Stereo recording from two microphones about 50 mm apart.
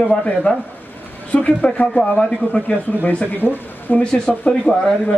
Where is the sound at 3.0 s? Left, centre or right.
Left.